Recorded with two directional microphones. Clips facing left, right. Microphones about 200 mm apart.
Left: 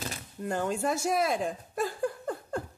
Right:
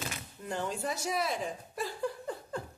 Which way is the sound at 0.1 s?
45° left (ahead or behind).